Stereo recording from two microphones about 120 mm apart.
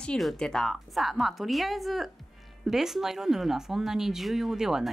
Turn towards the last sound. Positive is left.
turn(degrees=-5)  # may be behind; listen again after turning